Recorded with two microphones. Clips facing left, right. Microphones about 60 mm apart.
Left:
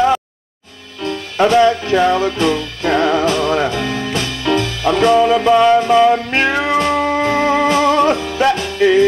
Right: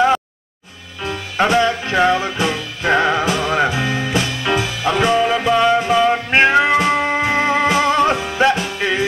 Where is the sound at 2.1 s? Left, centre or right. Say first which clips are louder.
Left 4 dB; centre.